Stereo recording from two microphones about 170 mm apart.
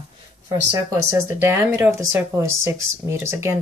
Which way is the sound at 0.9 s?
15° right (ahead or behind).